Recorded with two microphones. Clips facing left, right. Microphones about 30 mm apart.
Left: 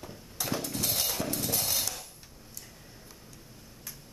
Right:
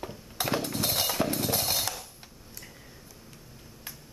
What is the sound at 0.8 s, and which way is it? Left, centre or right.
Music, right.